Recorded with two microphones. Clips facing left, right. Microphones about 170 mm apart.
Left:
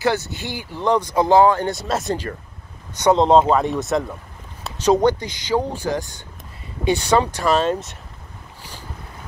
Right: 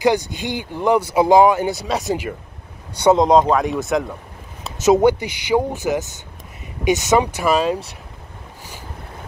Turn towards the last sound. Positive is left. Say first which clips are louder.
# right 1 dB
turn(degrees=-5)  # may be behind; listen again after turning